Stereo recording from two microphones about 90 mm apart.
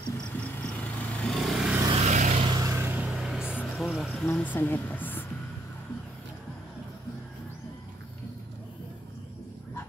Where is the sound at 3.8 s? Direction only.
Centre (ahead or behind).